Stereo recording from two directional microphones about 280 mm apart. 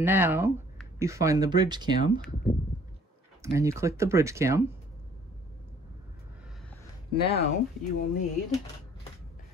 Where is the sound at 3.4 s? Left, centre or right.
Centre.